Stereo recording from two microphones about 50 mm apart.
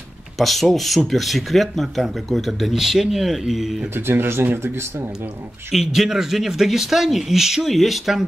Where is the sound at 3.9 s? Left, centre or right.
Right.